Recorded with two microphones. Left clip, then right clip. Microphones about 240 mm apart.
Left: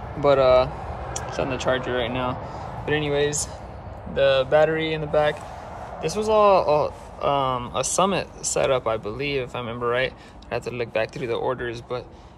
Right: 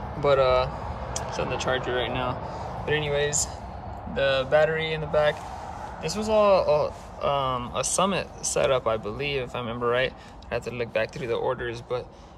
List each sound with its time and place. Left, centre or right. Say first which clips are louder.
0.2 s speech: left 4 dB; centre